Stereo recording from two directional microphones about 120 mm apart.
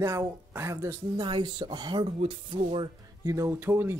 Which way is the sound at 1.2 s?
40° right (ahead or behind).